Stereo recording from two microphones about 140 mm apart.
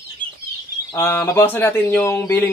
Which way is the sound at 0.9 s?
15° left (ahead or behind).